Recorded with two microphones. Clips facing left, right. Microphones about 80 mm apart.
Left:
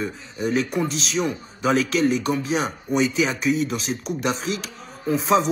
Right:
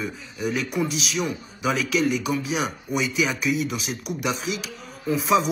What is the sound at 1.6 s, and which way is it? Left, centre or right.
Speech, left.